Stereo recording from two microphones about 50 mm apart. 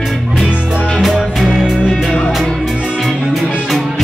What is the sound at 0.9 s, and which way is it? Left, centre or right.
Music, centre.